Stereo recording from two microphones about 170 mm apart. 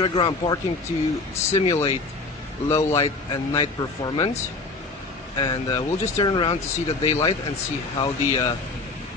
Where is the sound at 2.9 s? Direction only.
35° left (ahead or behind).